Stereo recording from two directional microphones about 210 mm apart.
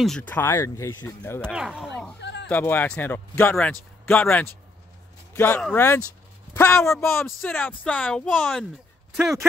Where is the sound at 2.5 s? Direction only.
10° left (ahead or behind).